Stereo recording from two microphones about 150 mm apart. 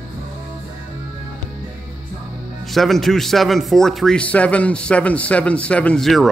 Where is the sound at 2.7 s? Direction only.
Centre (ahead or behind).